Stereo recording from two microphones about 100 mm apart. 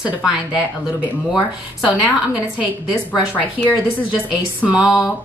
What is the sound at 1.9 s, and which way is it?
Speech, 15° right (ahead or behind).